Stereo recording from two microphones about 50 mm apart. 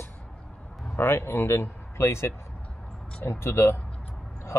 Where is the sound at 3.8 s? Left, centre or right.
Left.